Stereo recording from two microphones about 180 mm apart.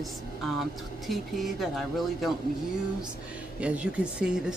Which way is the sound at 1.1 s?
Centre (ahead or behind).